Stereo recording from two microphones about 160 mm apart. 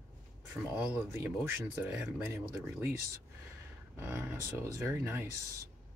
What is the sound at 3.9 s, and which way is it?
Speech, 15° right (ahead or behind).